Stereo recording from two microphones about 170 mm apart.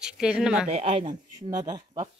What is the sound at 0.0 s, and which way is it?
Speech, 5° right (ahead or behind).